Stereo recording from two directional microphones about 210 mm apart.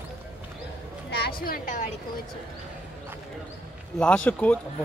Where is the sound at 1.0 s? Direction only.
50° left (ahead or behind).